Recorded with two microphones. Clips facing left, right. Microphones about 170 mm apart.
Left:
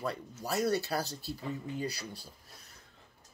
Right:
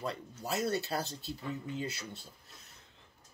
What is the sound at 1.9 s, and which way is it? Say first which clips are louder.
Speech: left 2 dB; 25° right (ahead or behind).